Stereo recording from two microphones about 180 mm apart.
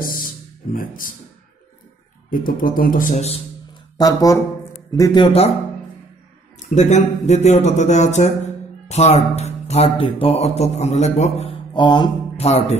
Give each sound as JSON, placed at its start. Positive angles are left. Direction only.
{"t": 0.0, "sound": "music", "side_deg": 50}
{"t": 0.7, "sound": "speech", "side_deg": 50}
{"t": 2.3, "sound": "speech", "side_deg": 50}
{"t": 4.0, "sound": "a man's voice", "side_deg": 20}
{"t": 6.7, "sound": "speech", "side_deg": 40}